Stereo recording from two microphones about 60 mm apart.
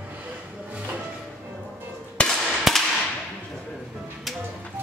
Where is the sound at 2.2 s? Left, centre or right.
Centre.